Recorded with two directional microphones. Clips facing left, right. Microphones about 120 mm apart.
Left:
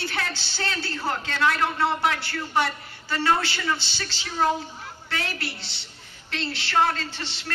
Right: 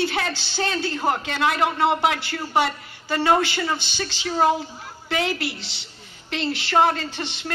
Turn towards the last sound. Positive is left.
turn(degrees=-15)  # may be behind; listen again after turning